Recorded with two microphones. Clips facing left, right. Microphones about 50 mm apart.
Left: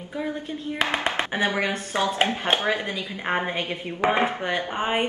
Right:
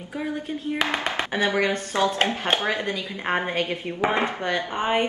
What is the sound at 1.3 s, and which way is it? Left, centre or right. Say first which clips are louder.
A woman's voice: right 5 dB; centre.